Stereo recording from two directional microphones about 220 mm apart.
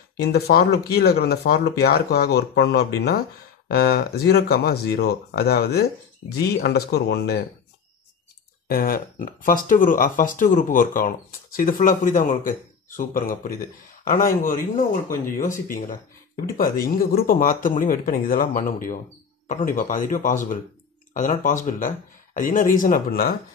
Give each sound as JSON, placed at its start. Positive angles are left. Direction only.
{"t": 0.2, "sound": "speech", "side_deg": 45}
{"t": 8.6, "sound": "speech", "side_deg": 40}